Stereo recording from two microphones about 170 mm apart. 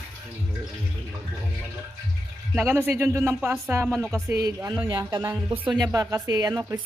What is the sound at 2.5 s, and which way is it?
Speech, 15° right (ahead or behind).